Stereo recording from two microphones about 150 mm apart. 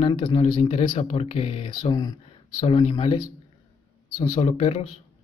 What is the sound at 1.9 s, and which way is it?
Speech, 30° left (ahead or behind).